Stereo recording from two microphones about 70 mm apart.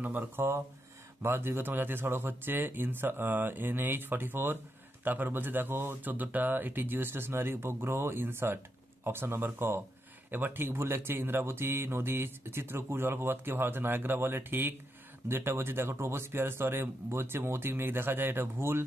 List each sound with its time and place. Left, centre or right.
0.0 s speech: right